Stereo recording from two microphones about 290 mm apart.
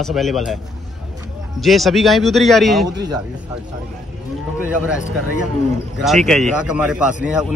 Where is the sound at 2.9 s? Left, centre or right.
Centre.